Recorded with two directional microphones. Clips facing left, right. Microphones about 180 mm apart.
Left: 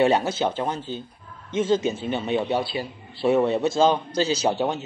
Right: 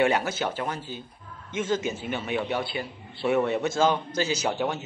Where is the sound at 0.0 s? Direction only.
25° left (ahead or behind).